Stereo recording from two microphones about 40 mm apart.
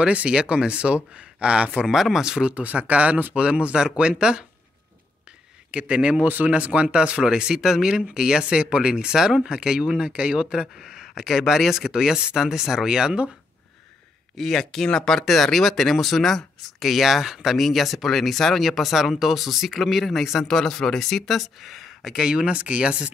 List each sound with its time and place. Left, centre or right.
0.0 s speech: right
1.9 s speech: centre
2.4 s speech: right
5.7 s speech: right
6.2 s speech: right
6.5 s speech: right
14.3 s speech: centre
20.3 s speech: centre
22.1 s speech: centre
22.4 s speech: right